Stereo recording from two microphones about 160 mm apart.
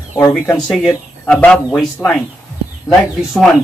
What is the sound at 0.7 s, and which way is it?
Speech, 5° left (ahead or behind).